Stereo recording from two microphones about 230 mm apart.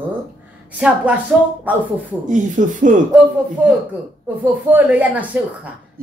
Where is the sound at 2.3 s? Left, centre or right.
Right.